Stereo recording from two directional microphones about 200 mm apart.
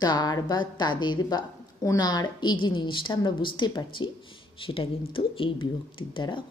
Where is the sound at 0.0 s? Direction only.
20° left (ahead or behind).